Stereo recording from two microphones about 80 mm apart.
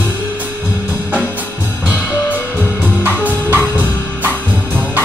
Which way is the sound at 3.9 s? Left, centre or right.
Centre.